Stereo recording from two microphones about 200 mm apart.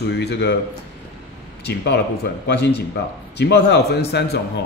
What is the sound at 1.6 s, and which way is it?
A man's voice, 60° left (ahead or behind).